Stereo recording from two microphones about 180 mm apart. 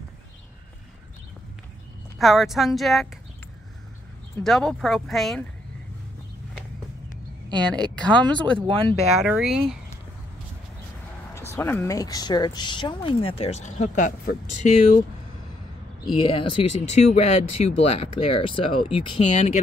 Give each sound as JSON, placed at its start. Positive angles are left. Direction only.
{"t": 2.1, "sound": "speech", "side_deg": 0}
{"t": 4.4, "sound": "speech", "side_deg": 0}
{"t": 7.4, "sound": "a woman's voice", "side_deg": -25}
{"t": 7.9, "sound": "speech", "side_deg": 5}
{"t": 8.5, "sound": "speech", "side_deg": -30}
{"t": 9.2, "sound": "speech", "side_deg": 0}
{"t": 11.3, "sound": "speech", "side_deg": 15}
{"t": 16.2, "sound": "speech", "side_deg": 30}
{"t": 19.3, "sound": "speech", "side_deg": 40}